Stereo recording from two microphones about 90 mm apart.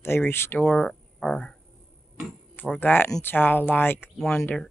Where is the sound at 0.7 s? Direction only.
5° left (ahead or behind).